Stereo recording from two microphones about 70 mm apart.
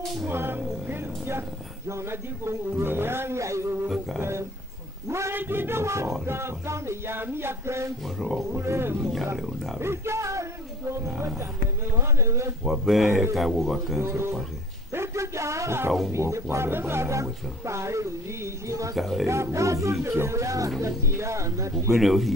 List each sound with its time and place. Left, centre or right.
0.3 s a man's voice: right
5.3 s a man's voice: right
8.2 s speech: centre
8.5 s a man's voice: right
9.4 s speech: centre
9.8 s pig: right
11.1 s a man's voice: right
12.6 s speech: centre
14.0 s a man's voice: right
14.9 s a sound: right
16.1 s speech: right
18.9 s speech: centre
19.2 s speech: right
21.9 s speech: centre